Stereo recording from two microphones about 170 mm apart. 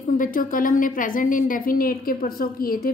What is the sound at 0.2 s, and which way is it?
A woman's voice, 55° left (ahead or behind).